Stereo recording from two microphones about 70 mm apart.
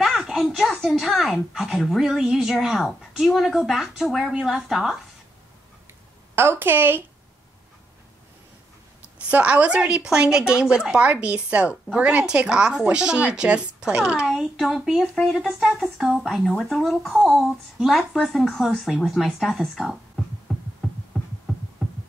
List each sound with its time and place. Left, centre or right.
0.0 s a sound: centre
0.5 s a woman's voice: centre
6.3 s a woman's voice: right
9.3 s a woman's voice: centre
20.5 s hum: centre